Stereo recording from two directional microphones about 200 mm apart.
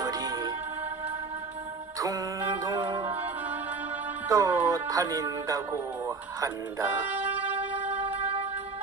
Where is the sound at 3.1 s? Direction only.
10° right (ahead or behind).